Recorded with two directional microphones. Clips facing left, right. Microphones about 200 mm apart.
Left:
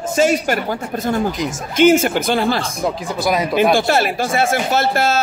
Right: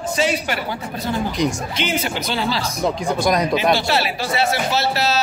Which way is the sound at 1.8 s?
50° left (ahead or behind).